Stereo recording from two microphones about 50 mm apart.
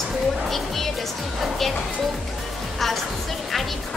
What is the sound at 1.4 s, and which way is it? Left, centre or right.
Speech, centre.